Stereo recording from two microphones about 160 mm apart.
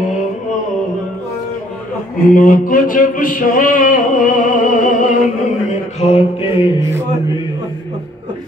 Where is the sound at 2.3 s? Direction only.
60° left (ahead or behind).